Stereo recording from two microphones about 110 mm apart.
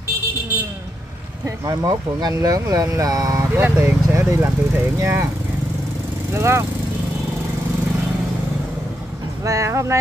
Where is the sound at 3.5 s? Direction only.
20° right (ahead or behind).